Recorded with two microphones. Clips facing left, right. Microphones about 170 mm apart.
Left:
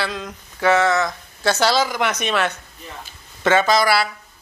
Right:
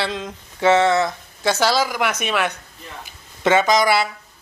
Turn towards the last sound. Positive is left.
turn(degrees=-20)  # may be behind; listen again after turning